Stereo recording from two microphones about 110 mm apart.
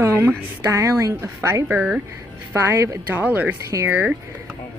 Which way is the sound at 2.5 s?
25° right (ahead or behind).